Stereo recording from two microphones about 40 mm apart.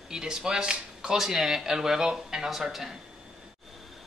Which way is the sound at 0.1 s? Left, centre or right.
Centre.